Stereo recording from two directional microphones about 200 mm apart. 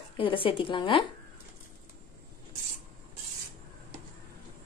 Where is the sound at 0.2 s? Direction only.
25° left (ahead or behind).